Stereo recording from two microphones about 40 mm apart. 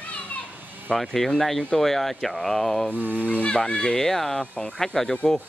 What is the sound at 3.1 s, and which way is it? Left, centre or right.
Speech, left.